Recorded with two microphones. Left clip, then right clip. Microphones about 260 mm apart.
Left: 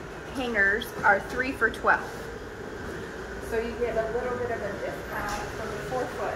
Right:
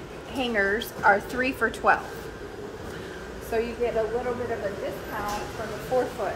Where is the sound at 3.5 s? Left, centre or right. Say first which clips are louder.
Right 3 dB; right.